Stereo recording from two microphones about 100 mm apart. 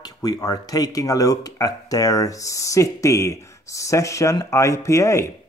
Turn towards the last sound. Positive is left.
turn(degrees=30)  # may be behind; listen again after turning